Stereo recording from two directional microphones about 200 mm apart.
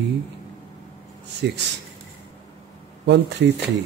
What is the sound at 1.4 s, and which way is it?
Speech, 60° right (ahead or behind).